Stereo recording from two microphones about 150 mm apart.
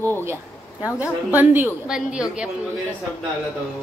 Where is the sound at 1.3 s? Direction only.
10° right (ahead or behind).